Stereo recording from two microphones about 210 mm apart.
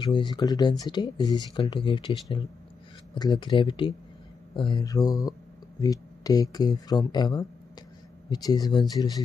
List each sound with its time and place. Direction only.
0.0 s speech: 20° left (ahead or behind)